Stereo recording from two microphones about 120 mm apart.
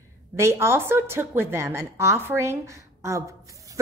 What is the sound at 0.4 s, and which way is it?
A woman's voice, 20° right (ahead or behind).